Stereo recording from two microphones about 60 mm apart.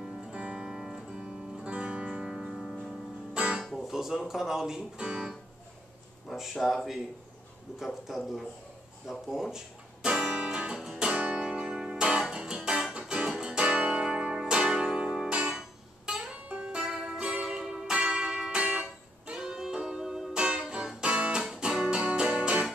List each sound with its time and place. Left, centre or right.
0.0 s music: centre
3.3 s music: centre
3.6 s music: centre
4.3 s speech: centre
6.2 s speech: centre
8.1 s speech: centre
10.0 s music: centre